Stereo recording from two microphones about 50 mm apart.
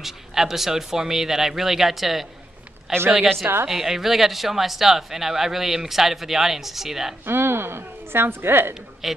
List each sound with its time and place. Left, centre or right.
0.0 s a man's voice: centre
7.2 s a woman's voice: right
9.0 s a man's voice: centre